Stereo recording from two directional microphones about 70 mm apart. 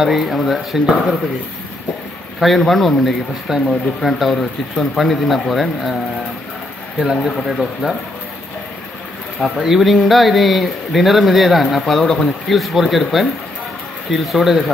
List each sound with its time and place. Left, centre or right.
0.0 s speech: centre
2.4 s speech: centre
7.0 s speech: centre
9.4 s speech: centre